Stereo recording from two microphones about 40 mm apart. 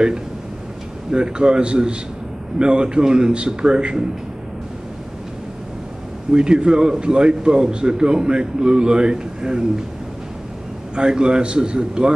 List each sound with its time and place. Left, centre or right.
1.1 s a man's voice: right
6.3 s a man's voice: right
11.0 s a man's voice: right